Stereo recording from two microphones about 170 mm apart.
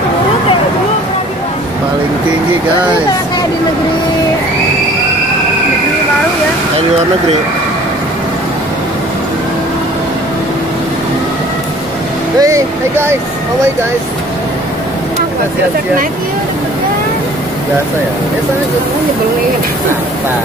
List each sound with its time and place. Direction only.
12.4 s speech: 20° right (ahead or behind)